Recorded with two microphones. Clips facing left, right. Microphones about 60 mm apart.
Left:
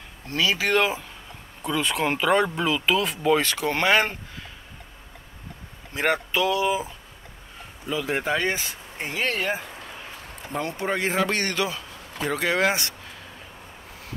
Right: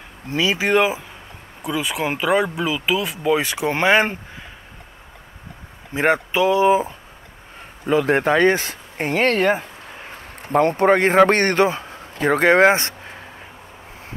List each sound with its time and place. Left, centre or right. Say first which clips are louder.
0.3 s speech: right 4 dB; centre
5.9 s speech: right 5 dB; right
7.8 s speech: right 9 dB; right
10.0 s a man's voice: right 4 dB; right